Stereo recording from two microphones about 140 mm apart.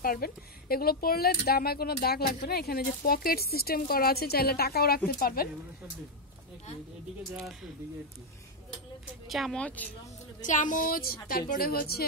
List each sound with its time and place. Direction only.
0.0 s speech: 90° left
9.3 s speech: centre (ahead or behind)
10.4 s speech: 65° left (ahead or behind); by 12.0 s 90° left